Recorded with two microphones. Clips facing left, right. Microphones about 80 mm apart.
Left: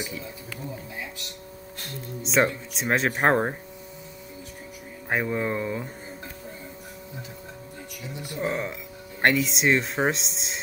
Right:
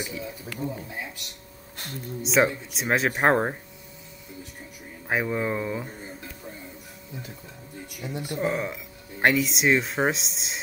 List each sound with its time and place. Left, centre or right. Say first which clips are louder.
0.0 s speech: right 1 dB; centre
2.2 s speech: right 1 dB; centre
5.1 s speech: even; centre
8.0 s speech: right 6 dB; right
8.4 s speech: even; centre